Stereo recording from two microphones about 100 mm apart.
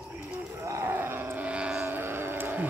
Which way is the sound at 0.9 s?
20° right (ahead or behind).